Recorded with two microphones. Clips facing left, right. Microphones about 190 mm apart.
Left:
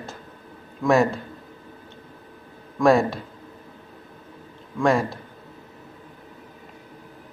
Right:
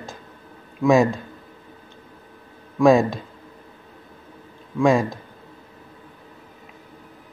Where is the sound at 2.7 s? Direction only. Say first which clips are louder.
Right 3 dB; 15° right (ahead or behind).